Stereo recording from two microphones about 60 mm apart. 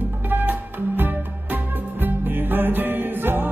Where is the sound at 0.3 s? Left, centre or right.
Right.